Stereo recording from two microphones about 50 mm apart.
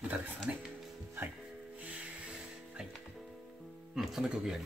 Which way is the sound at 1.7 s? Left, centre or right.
Right.